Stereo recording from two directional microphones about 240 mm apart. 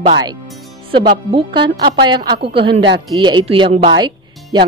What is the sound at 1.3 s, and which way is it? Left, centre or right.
A woman's voice, centre.